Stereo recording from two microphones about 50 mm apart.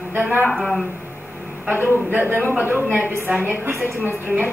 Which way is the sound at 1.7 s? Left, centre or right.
Right.